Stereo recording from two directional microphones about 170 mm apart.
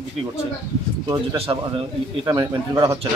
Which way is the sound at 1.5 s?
25° right (ahead or behind).